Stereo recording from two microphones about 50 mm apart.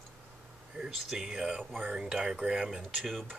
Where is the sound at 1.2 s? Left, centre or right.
Centre.